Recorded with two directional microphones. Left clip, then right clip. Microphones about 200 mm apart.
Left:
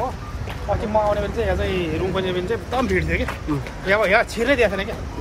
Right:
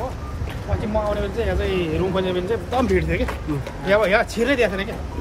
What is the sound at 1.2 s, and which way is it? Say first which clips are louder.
Speech: left 1 dB; 5° right (ahead or behind).